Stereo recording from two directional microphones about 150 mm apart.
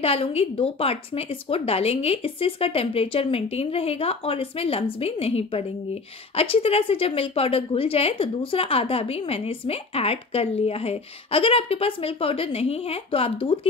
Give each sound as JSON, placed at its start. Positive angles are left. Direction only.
{"t": 0.0, "sound": "a woman's voice", "side_deg": 40}